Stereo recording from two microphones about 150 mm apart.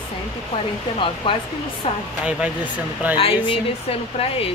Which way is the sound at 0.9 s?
35° left (ahead or behind).